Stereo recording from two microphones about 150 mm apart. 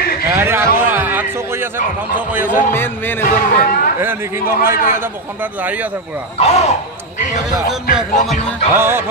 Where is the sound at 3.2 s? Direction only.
65° left (ahead or behind).